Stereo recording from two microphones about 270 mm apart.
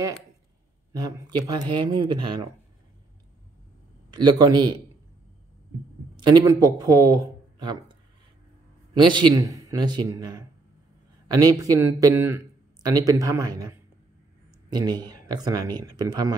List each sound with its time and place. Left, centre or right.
0.9 s speech: centre
4.1 s speech: centre
6.1 s speech: centre